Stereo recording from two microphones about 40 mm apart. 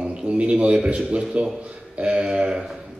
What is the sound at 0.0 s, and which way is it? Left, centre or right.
A man's voice, right.